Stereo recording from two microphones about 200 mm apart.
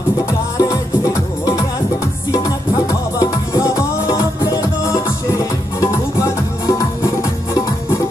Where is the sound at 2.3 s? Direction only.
15° left (ahead or behind).